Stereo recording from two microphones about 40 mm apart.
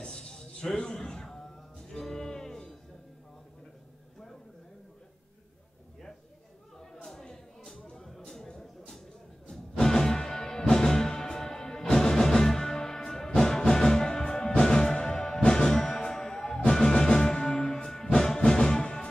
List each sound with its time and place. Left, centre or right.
0.0 s music: centre
7.1 s a sound: centre
9.5 s music: centre